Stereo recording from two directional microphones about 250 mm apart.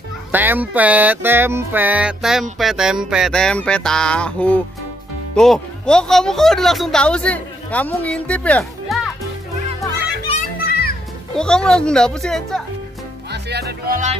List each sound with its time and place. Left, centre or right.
0.3 s music: centre
2.6 s speech: centre
10.7 s music: left
11.3 s speech: centre
13.3 s speech: right